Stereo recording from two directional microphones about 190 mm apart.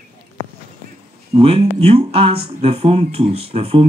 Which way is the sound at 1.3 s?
30° right (ahead or behind).